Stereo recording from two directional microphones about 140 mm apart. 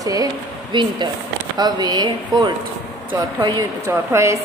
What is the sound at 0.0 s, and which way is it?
A woman's voice, 25° right (ahead or behind).